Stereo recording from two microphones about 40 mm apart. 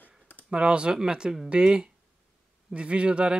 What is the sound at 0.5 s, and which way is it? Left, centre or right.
Speech, right.